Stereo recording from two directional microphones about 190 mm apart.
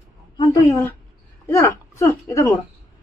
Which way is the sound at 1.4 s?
15° left (ahead or behind).